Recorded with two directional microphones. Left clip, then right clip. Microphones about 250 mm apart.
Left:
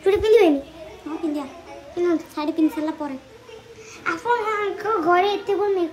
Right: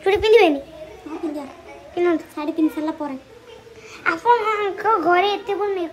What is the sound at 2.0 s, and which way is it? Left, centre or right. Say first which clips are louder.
A child's voice: right 2 dB; centre.